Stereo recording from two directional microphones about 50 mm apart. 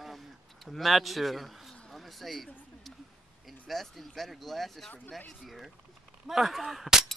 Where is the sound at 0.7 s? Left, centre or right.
Centre.